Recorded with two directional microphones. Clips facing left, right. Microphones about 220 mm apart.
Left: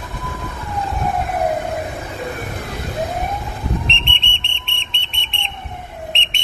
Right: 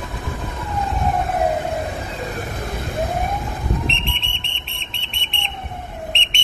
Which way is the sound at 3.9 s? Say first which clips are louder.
Even; centre (ahead or behind).